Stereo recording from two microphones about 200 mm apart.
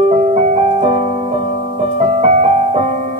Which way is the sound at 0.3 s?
30° right (ahead or behind).